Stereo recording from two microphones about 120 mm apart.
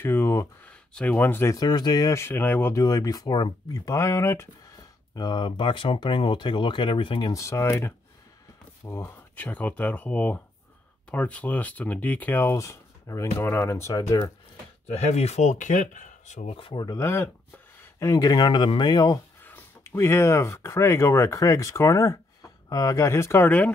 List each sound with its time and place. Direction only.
0.0 s speech: 20° left (ahead or behind)
0.7 s speech: 10° left (ahead or behind)
1.6 s speech: 35° left (ahead or behind); by 2.8 s 15° left (ahead or behind)
2.8 s speech: 30° left (ahead or behind)
5.1 s speech: 35° left (ahead or behind)
7.3 s speech: 25° left (ahead or behind)
14.9 s speech: 65° left (ahead or behind); by 16.4 s 90° left
16.4 s speech: 50° left (ahead or behind)
19.4 s speech: 15° left (ahead or behind)